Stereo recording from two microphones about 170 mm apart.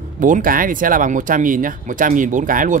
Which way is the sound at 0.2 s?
55° right (ahead or behind).